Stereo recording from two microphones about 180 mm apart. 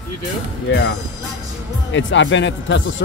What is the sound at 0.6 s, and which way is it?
Speech, 70° left (ahead or behind).